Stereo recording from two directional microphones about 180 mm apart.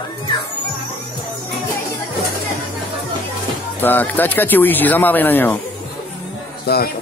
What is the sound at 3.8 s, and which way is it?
Speech, 10° left (ahead or behind).